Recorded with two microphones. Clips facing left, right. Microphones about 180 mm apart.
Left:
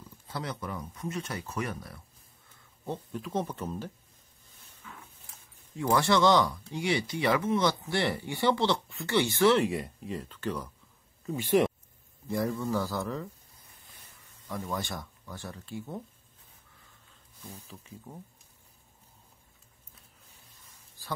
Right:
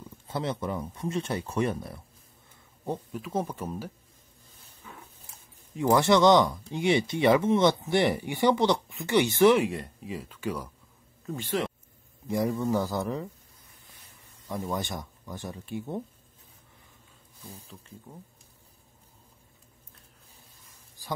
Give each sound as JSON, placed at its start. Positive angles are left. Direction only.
{"t": 0.3, "sound": "speech", "side_deg": -25}
{"t": 3.1, "sound": "speech", "side_deg": -5}
{"t": 5.8, "sound": "speech", "side_deg": -20}
{"t": 9.7, "sound": "speech", "side_deg": 0}
{"t": 11.2, "sound": "speech", "side_deg": 10}
{"t": 12.3, "sound": "speech", "side_deg": -15}
{"t": 14.5, "sound": "speech", "side_deg": -20}
{"t": 21.0, "sound": "a sound", "side_deg": -15}